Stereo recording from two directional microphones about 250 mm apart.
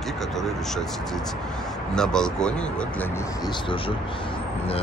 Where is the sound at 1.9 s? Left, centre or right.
Centre.